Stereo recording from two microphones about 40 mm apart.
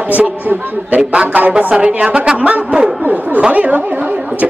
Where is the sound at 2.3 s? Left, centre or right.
Right.